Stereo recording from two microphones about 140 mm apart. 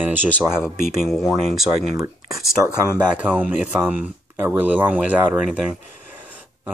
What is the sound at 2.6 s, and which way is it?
Speech, 20° right (ahead or behind).